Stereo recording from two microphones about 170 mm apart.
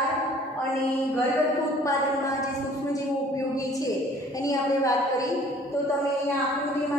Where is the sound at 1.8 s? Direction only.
20° left (ahead or behind).